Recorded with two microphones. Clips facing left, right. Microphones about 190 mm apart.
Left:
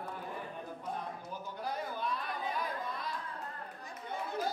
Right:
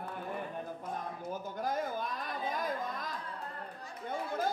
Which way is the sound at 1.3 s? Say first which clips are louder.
Right 5 dB; 45° right (ahead or behind).